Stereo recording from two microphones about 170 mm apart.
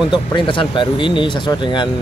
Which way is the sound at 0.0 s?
25° left (ahead or behind).